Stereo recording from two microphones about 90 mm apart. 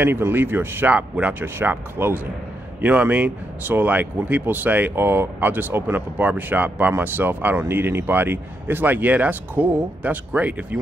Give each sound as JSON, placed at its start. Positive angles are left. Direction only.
{"t": 0.0, "sound": "speech", "side_deg": -25}